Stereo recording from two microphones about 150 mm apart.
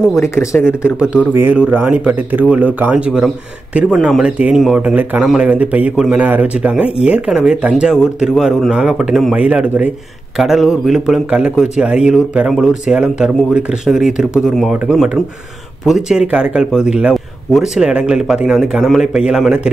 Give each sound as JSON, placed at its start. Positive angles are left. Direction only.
{"t": 0.2, "sound": "speech", "side_deg": 20}
{"t": 1.3, "sound": "a man's voice", "side_deg": -10}